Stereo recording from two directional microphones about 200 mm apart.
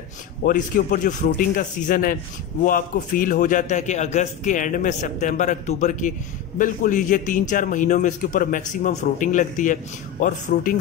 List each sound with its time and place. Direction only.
0.4 s a man's voice: 45° left (ahead or behind)